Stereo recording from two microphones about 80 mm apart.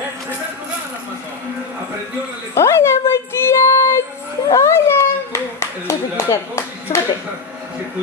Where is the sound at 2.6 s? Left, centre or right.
Left.